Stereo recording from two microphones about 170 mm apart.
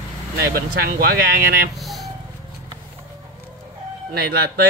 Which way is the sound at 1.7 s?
Centre (ahead or behind).